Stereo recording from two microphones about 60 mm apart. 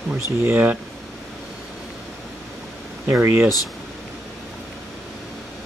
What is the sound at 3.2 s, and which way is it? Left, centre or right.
Speech, right.